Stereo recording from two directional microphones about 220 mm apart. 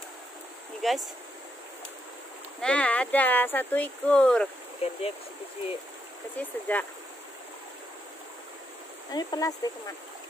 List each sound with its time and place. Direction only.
0.8 s speech: centre (ahead or behind)
2.6 s speech: 5° left (ahead or behind)
4.8 s speech: 25° left (ahead or behind)
6.3 s speech: 5° left (ahead or behind)
9.1 s speech: 20° left (ahead or behind)